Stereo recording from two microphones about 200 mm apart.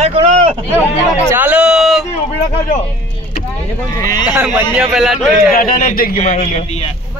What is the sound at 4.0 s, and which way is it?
Speech, 20° left (ahead or behind).